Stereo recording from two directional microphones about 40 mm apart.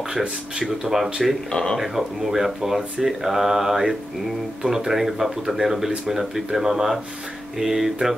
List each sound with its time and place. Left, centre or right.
0.7 s speech: centre
1.5 s speech: centre
1.8 s speech: centre